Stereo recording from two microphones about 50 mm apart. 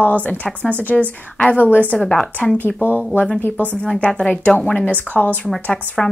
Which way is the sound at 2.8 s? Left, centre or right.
Left.